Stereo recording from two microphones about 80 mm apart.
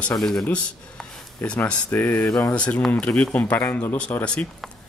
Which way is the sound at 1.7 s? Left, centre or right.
Left.